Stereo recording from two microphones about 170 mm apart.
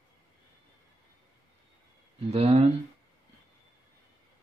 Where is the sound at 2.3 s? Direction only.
40° right (ahead or behind).